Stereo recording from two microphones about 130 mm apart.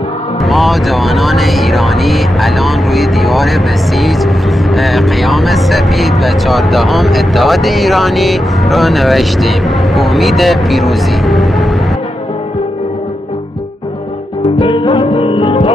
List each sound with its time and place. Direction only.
0.5 s speech: centre (ahead or behind)
14.6 s music: 40° left (ahead or behind)